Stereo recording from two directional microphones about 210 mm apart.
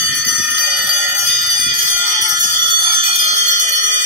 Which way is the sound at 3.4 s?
35° right (ahead or behind).